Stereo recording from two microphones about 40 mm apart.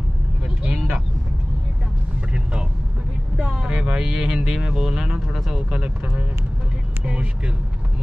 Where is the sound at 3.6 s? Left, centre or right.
Right.